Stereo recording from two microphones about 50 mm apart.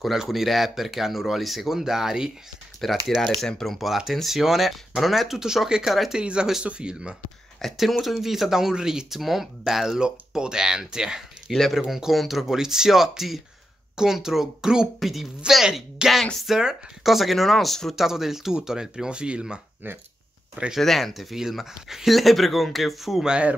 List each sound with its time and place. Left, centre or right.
0.0 s speech: centre
2.8 s speech: centre
3.7 s speech: centre
7.6 s speech: centre
8.0 s speech: centre
17.9 s speech: centre
20.8 s speech: centre